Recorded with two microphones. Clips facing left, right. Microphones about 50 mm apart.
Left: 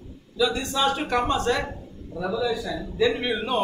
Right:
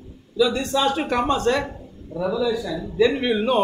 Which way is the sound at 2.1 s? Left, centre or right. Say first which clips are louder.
Right 5 dB; right.